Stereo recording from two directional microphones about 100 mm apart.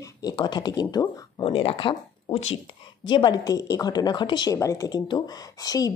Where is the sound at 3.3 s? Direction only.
35° left (ahead or behind).